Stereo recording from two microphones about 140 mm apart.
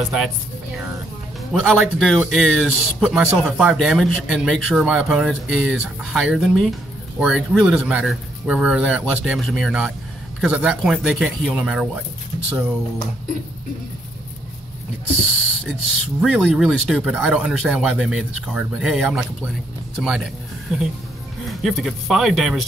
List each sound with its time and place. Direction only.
0.0 s speech: 5° right (ahead or behind)
1.5 s speech: centre (ahead or behind)
15.6 s speech: centre (ahead or behind)
20.7 s speech: centre (ahead or behind)